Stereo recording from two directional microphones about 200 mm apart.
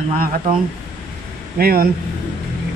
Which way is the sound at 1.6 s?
50° right (ahead or behind).